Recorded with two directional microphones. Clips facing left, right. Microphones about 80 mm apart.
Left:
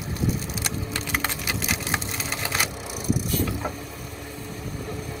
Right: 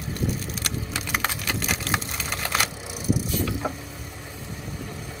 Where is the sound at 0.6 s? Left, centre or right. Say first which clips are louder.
Left 1 dB; centre.